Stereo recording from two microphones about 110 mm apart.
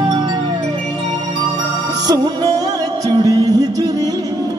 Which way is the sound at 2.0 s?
35° right (ahead or behind).